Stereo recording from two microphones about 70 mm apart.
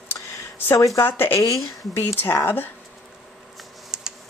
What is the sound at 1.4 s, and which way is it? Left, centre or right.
Speech, left.